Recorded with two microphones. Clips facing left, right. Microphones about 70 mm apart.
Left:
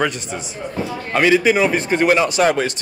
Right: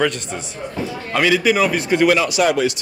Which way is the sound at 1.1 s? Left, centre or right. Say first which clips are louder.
Left 2 dB; left.